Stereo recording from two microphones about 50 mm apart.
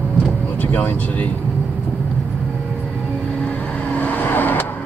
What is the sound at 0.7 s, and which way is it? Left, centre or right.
Vehicle, left.